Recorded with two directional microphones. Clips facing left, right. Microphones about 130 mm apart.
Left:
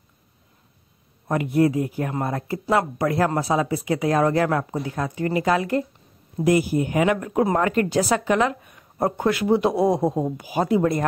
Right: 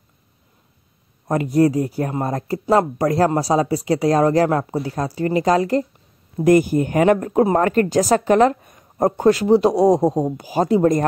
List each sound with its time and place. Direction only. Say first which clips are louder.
1.3 s speech: right 3 dB; 35° right (ahead or behind)